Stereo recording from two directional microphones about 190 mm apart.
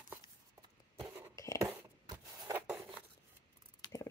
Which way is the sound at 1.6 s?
15° right (ahead or behind).